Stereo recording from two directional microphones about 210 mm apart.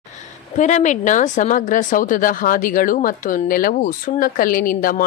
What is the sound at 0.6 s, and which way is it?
Speech, 35° left (ahead or behind).